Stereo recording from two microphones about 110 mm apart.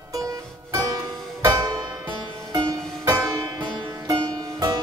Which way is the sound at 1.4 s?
35° right (ahead or behind).